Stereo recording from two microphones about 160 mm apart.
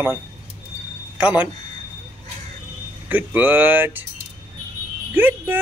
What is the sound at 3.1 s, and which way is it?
Speech, 10° right (ahead or behind).